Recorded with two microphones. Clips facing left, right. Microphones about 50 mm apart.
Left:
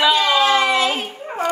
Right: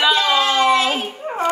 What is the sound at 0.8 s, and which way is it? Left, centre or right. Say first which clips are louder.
Speech: even; right.